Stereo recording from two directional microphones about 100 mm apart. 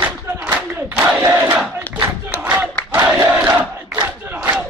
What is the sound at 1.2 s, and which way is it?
Crowd, 25° right (ahead or behind).